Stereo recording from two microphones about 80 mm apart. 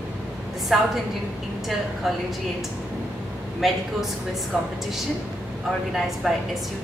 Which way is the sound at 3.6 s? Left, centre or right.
Centre.